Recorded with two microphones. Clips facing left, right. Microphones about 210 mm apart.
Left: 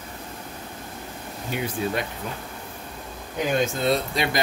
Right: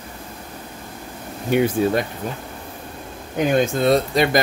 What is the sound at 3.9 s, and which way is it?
Speech, 45° right (ahead or behind).